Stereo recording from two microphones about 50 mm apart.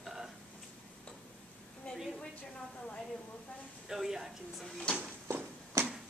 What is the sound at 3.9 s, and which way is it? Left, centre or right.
Speech, centre.